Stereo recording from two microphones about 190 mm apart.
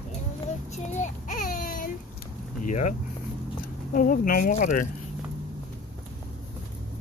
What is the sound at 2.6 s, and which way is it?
Speech, 40° left (ahead or behind).